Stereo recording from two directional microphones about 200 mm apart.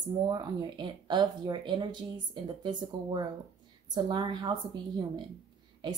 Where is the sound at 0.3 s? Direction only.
20° right (ahead or behind).